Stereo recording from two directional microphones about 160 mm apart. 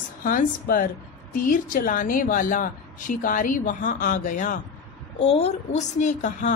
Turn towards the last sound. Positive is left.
turn(degrees=50)  # may be behind; listen again after turning